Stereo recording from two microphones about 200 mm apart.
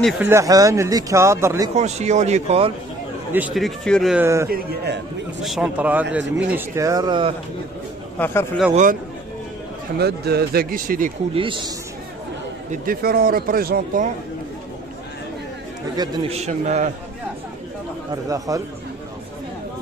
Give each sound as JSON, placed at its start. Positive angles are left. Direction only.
{"t": 0.2, "sound": "speech", "side_deg": -15}
{"t": 1.8, "sound": "a man's voice", "side_deg": -35}
{"t": 3.3, "sound": "a man's voice", "side_deg": -5}
{"t": 4.5, "sound": "speech", "side_deg": -55}
{"t": 5.4, "sound": "a man's voice", "side_deg": -5}
{"t": 8.2, "sound": "speech", "side_deg": 10}
{"t": 9.9, "sound": "speech", "side_deg": -55}
{"t": 11.3, "sound": "a man's voice", "side_deg": -25}
{"t": 12.7, "sound": "speech", "side_deg": -45}
{"t": 16.0, "sound": "a man's voice", "side_deg": -30}
{"t": 18.1, "sound": "speech", "side_deg": -15}